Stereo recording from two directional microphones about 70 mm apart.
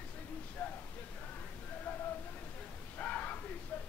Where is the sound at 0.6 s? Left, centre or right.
Left.